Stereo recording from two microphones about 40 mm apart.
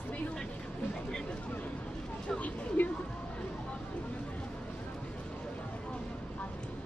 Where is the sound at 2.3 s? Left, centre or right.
Left.